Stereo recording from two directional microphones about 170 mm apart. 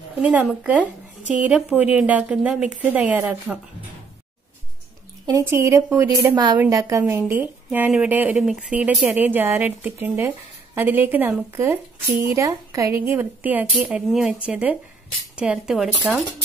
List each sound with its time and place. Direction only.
0.2 s a woman's voice: 10° right (ahead or behind)
5.2 s a woman's voice: 15° right (ahead or behind)